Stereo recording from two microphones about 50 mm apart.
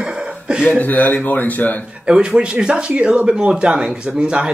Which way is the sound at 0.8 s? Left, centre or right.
Left.